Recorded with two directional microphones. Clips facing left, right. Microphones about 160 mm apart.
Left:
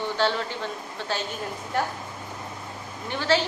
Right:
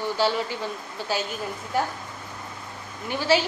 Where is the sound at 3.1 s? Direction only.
10° right (ahead or behind).